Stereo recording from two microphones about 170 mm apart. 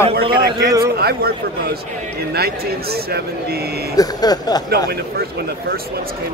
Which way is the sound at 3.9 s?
20° left (ahead or behind).